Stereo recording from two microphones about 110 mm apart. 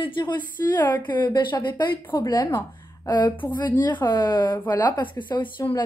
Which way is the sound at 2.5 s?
25° left (ahead or behind).